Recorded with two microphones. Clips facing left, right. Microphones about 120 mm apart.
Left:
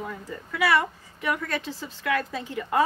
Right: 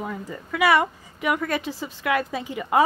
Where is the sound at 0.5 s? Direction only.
65° right (ahead or behind).